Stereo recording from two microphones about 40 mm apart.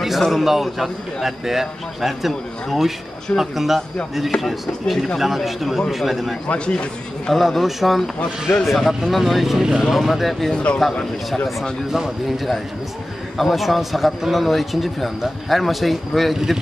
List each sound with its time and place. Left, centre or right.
0.3 s a man's voice: centre
5.2 s a man's voice: centre
6.4 s a man's voice: left
7.3 s a man's voice: centre
10.5 s a man's voice: left
11.9 s a man's voice: centre